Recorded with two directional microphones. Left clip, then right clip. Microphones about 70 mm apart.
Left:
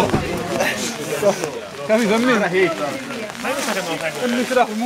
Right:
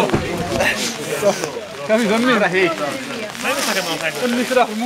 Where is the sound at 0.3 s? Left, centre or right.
Centre.